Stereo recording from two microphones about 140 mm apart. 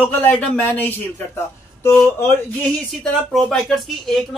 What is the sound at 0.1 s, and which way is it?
Speech, 10° left (ahead or behind).